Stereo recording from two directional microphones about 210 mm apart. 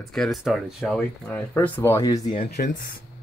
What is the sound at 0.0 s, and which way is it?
Speech, centre (ahead or behind).